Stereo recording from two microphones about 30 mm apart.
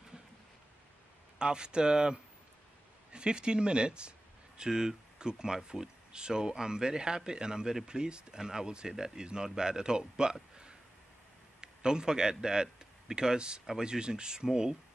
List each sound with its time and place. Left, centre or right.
1.4 s speech: right
4.6 s speech: right
11.6 s a man's voice: right